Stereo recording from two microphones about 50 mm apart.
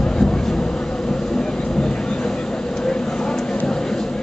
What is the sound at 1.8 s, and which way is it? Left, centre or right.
Vehicle, centre.